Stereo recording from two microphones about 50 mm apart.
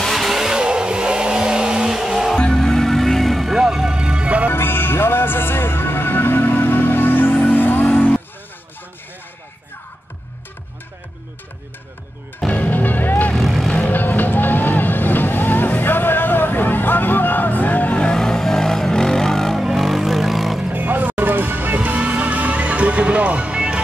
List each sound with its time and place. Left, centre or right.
0.0 s vehicle: centre
2.3 s music: centre
3.6 s music: centre
4.5 s music: left
12.5 s music: left
13.4 s vehicle: centre
13.8 s vehicle: left
18.0 s vehicle: centre
20.7 s music: right